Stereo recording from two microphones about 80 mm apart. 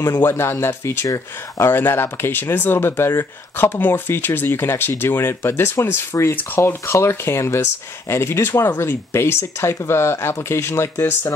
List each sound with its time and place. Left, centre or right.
0.2 s speech: left
1.7 s speech: left